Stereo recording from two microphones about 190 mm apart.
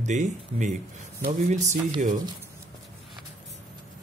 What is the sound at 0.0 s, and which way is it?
Speech, 40° right (ahead or behind).